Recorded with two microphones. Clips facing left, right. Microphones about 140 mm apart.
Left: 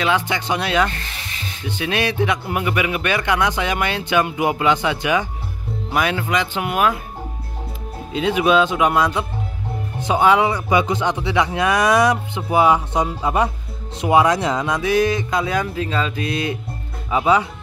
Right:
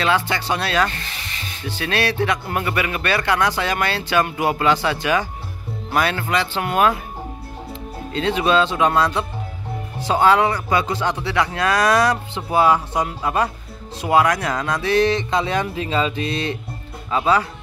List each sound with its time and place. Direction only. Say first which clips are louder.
0.0 s speech: even; 15° left (ahead or behind)
8.1 s speech: left 2 dB; 10° left (ahead or behind)
17.1 s speech: left 2 dB; 15° left (ahead or behind)